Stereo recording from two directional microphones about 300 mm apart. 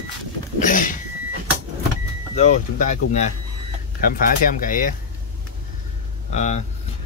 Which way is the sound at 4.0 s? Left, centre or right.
Left.